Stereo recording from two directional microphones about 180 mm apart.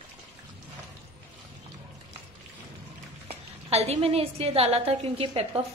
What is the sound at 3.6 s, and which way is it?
A woman's voice, 35° right (ahead or behind).